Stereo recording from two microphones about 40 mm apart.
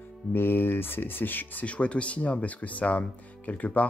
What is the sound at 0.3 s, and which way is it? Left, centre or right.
Speech, left.